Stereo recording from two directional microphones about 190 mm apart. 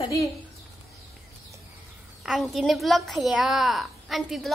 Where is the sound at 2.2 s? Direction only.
Centre (ahead or behind).